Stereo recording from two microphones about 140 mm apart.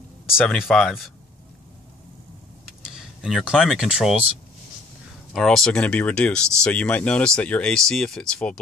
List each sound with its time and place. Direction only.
0.3 s speech: centre (ahead or behind)
2.9 s speech: 5° right (ahead or behind)
5.3 s speech: centre (ahead or behind)